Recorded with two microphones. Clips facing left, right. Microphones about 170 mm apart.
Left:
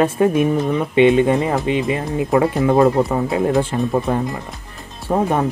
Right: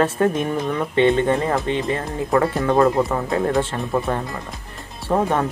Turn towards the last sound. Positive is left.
turn(degrees=10)  # may be behind; listen again after turning